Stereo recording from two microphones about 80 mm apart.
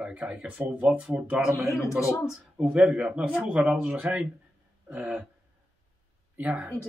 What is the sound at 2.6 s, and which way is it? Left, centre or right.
Speech, centre.